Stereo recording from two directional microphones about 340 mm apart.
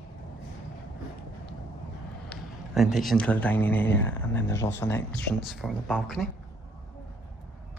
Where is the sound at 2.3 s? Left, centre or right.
Centre.